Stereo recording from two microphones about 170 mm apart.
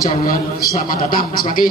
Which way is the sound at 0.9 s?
55° left (ahead or behind).